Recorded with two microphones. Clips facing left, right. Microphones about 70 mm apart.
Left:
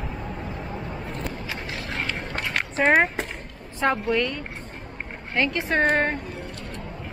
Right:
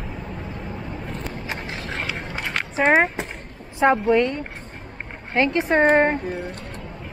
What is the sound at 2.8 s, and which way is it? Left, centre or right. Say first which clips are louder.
Speech: right 2 dB; centre.